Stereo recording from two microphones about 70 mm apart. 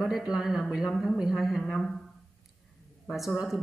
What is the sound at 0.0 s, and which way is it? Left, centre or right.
Speech, centre.